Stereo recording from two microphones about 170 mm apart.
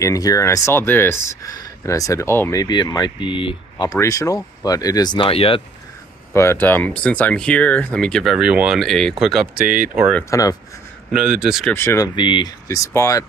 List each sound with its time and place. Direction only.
0.0 s speech: 20° left (ahead or behind)
6.3 s speech: 15° left (ahead or behind); by 9.7 s centre (ahead or behind)
10.3 s speech: 20° left (ahead or behind)
11.1 s speech: 5° right (ahead or behind)
11.7 s speech: 15° left (ahead or behind)
12.2 s speech: 30° left (ahead or behind)